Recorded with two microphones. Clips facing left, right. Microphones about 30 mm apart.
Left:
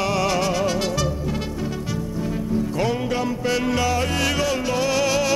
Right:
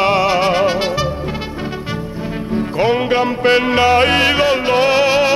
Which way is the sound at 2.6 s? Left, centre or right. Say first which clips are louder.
Right 9 dB; right.